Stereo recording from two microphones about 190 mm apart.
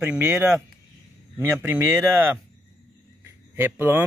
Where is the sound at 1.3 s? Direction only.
10° right (ahead or behind).